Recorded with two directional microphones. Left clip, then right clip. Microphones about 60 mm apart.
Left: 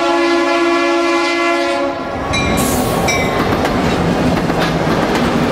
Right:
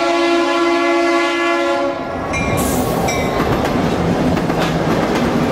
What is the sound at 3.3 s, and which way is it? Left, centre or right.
Train, centre.